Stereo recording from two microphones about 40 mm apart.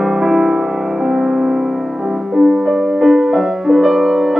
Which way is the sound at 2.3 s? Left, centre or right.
Centre.